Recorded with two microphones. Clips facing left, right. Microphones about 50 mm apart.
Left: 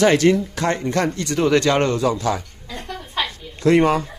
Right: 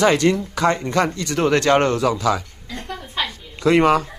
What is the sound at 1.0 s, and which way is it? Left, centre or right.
Speech, centre.